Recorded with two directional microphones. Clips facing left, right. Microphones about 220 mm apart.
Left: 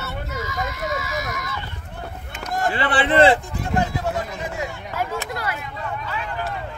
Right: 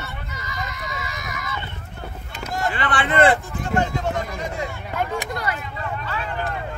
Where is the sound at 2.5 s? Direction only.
45° left (ahead or behind).